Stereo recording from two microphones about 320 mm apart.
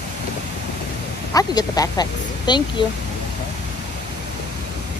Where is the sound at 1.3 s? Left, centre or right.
Centre.